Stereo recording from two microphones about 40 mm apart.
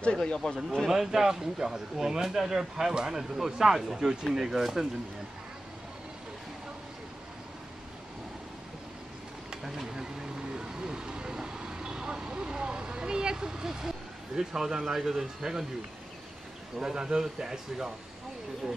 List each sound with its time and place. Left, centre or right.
0.0 s speech: left
0.8 s speech: centre
9.5 s a sound: centre
16.7 s speech: centre